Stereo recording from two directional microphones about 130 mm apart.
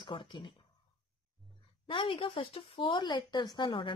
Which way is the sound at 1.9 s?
45° left (ahead or behind).